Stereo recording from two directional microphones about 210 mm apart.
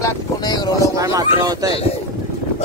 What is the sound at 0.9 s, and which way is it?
Speech, 15° right (ahead or behind).